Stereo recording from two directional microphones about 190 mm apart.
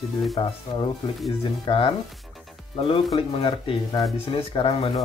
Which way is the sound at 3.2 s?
30° left (ahead or behind).